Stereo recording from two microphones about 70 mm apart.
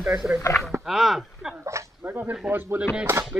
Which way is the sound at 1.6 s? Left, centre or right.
Right.